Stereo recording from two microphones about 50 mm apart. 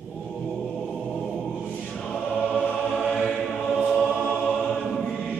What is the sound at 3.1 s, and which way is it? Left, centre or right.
Choir, left.